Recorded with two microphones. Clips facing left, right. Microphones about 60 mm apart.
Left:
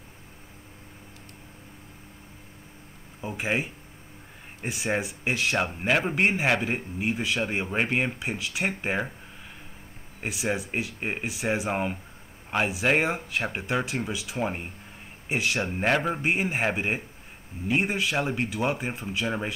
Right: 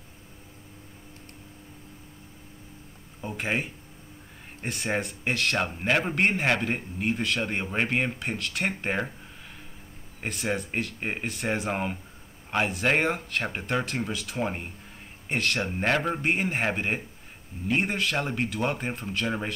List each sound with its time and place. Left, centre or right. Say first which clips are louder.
3.2 s speech: left 1 dB; centre
10.2 s speech: left 1 dB; centre